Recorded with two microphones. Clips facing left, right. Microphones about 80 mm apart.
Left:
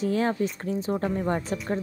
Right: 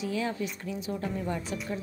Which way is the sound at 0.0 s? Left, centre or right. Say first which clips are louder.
Left 6 dB; left.